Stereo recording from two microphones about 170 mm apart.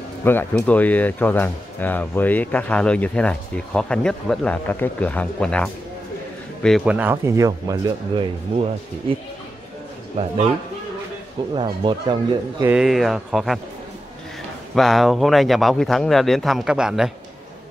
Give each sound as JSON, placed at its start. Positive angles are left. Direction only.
{"t": 0.2, "sound": "speech", "side_deg": 10}
{"t": 10.1, "sound": "a man's voice", "side_deg": -35}
{"t": 11.5, "sound": "speech", "side_deg": -30}
{"t": 12.6, "sound": "speech", "side_deg": -5}
{"t": 14.8, "sound": "speech", "side_deg": 0}